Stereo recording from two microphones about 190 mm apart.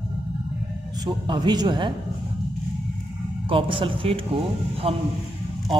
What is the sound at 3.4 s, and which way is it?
A man's voice, 25° right (ahead or behind).